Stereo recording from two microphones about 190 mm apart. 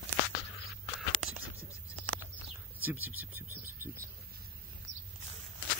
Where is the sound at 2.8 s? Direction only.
10° right (ahead or behind).